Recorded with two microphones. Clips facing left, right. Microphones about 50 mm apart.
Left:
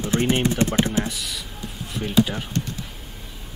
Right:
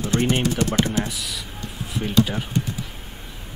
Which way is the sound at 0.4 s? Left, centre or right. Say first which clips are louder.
Left 1 dB; left.